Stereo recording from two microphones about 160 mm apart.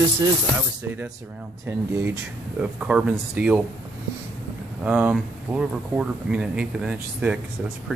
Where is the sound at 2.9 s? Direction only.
10° right (ahead or behind).